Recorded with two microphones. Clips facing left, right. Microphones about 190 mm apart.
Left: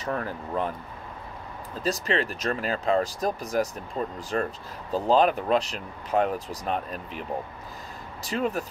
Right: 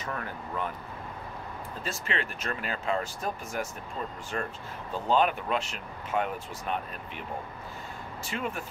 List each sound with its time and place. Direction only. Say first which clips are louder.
0.0 s speech: left 6 dB; 35° left (ahead or behind)
1.8 s speech: left 8 dB; 40° left (ahead or behind)